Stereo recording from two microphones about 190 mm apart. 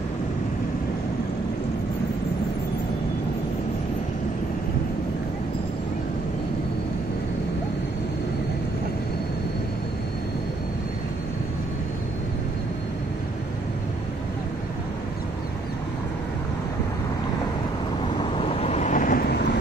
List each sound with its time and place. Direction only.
18.1 s vehicle: 30° left (ahead or behind); by 19.4 s 55° left (ahead or behind)